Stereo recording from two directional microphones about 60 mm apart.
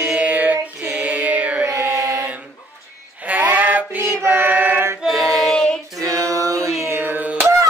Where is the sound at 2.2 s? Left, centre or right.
Right.